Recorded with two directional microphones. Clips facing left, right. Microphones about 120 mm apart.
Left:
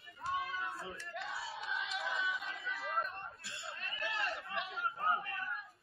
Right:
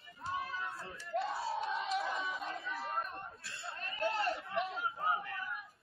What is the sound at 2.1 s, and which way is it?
Chatter, 35° right (ahead or behind).